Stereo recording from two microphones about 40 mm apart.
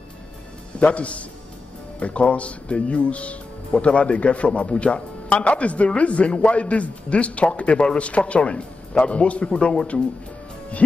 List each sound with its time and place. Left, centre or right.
0.7 s a man's voice: left